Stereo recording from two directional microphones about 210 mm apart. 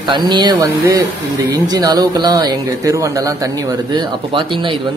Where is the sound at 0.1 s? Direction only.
20° right (ahead or behind).